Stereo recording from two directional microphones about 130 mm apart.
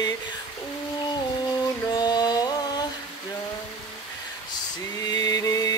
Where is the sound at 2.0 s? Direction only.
30° left (ahead or behind).